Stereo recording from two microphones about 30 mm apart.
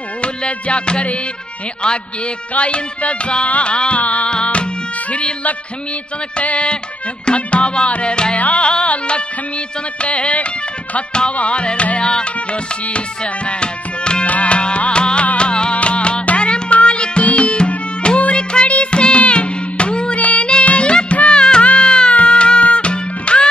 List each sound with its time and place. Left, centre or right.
0.2 s music: left
2.5 s music: left
3.7 s music: left
4.0 s music: left
4.3 s music: left
6.4 s music: left
8.4 s music: left
13.2 s tabla: left
14.2 s music: left
20.2 s music: left
20.9 s music of bollywood: left
21.4 s music: left